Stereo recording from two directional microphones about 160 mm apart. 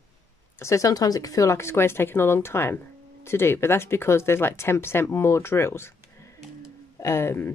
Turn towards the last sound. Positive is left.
turn(degrees=15)  # may be behind; listen again after turning